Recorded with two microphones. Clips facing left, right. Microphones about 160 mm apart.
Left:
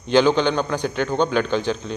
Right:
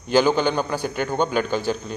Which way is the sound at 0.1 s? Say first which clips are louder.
Left 2 dB; 10° right (ahead or behind).